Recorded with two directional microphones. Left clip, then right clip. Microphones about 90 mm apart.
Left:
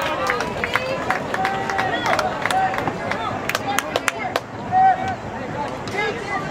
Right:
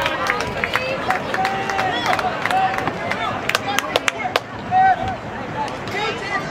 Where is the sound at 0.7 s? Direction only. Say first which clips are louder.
Right 1 dB; 20° right (ahead or behind).